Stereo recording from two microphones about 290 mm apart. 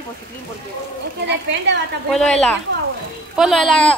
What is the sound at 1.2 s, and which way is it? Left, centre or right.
Speech, right.